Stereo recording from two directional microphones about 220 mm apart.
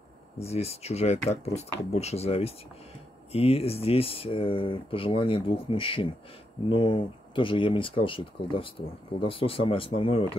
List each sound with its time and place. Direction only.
0.4 s speech: 30° left (ahead or behind)